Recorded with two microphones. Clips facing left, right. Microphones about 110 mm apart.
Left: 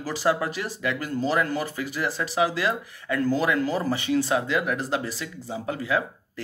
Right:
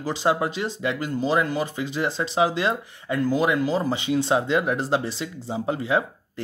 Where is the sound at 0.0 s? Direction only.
20° right (ahead or behind).